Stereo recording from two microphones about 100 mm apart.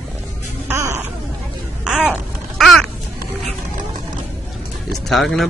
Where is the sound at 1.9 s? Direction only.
15° right (ahead or behind).